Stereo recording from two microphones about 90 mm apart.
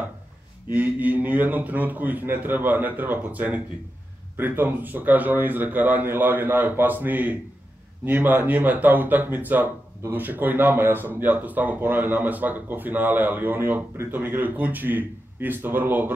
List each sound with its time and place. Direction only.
0.7 s speech: 20° right (ahead or behind)